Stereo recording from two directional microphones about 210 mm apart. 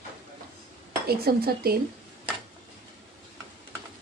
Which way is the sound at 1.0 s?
45° right (ahead or behind).